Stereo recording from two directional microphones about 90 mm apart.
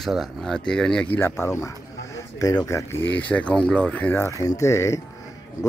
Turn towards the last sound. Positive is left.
turn(degrees=35)  # may be behind; listen again after turning